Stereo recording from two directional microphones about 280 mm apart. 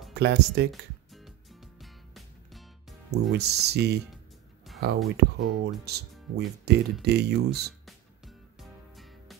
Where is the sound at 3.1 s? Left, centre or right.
Right.